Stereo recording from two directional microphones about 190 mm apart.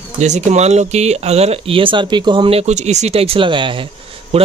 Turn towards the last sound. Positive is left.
turn(degrees=-30)  # may be behind; listen again after turning